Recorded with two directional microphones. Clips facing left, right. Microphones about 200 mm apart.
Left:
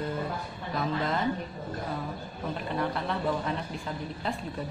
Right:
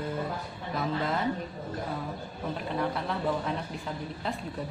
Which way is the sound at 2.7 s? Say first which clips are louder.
Left 1 dB; centre (ahead or behind).